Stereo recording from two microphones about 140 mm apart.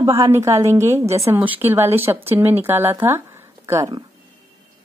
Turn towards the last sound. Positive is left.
turn(degrees=-20)  # may be behind; listen again after turning